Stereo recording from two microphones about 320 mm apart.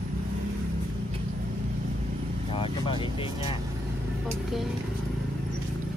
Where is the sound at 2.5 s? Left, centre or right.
Centre.